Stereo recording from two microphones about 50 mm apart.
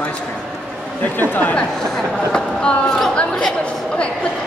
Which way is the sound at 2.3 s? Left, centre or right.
Centre.